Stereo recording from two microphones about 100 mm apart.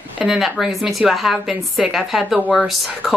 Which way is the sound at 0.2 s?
5° right (ahead or behind).